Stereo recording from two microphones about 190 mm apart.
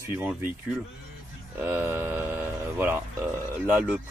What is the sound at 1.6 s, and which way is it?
Speech, 10° right (ahead or behind).